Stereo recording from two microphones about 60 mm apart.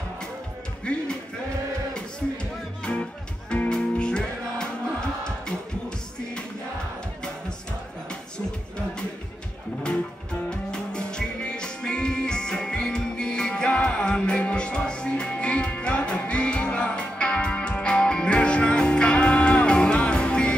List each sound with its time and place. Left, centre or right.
0.9 s speech: centre
2.8 s music: centre
10.5 s music: centre